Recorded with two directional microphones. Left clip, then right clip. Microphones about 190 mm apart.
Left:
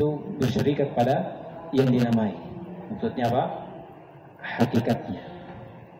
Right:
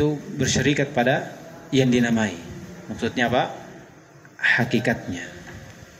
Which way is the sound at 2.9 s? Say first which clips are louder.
Right 3 dB; 50° right (ahead or behind).